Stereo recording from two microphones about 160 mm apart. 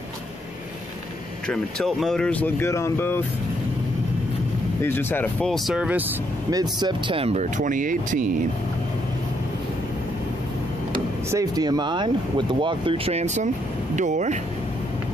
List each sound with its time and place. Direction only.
1.5 s speech: centre (ahead or behind)
4.8 s speech: 15° left (ahead or behind); by 6.0 s 5° right (ahead or behind)
6.5 s speech: 25° right (ahead or behind); by 8.3 s 55° right (ahead or behind)
11.2 s speech: 20° right (ahead or behind); by 14.4 s 50° right (ahead or behind)